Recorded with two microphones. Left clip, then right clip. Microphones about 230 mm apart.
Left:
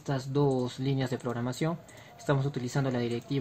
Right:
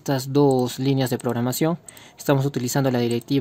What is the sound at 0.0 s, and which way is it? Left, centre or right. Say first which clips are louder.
Speech: right 10 dB; right.